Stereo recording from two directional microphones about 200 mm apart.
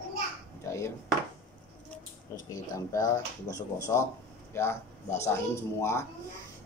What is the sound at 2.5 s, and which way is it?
Speech, 15° left (ahead or behind).